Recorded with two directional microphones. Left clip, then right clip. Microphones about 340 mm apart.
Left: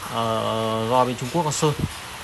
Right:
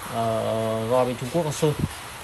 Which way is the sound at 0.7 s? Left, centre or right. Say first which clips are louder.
Left 3 dB; centre.